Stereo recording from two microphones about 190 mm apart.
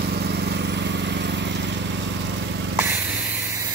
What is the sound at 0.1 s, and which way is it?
Lawn mower, 60° right (ahead or behind).